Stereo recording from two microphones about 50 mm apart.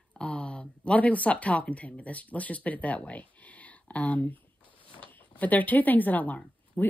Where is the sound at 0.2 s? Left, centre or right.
Centre.